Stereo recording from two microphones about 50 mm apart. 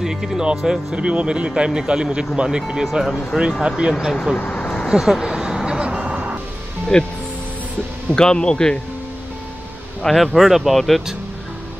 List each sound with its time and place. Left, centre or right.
0.0 s speech: centre
0.9 s speech: right
2.8 s speech: centre
3.6 s speech: centre
4.1 s a man's voice: centre
4.4 s vehicle: left
4.8 s music: centre
6.9 s a man's voice: centre
8.1 s a man's voice: centre
10.0 s speech: centre